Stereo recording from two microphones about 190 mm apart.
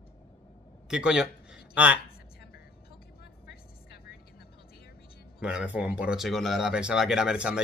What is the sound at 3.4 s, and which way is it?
Vehicle, 55° left (ahead or behind).